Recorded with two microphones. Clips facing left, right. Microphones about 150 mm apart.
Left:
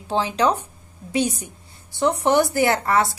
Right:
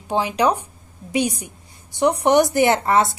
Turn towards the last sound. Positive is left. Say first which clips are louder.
# right 2 dB
turn(degrees=-20)  # may be behind; listen again after turning